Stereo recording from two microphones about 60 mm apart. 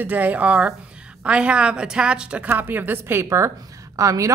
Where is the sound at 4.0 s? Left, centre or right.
Right.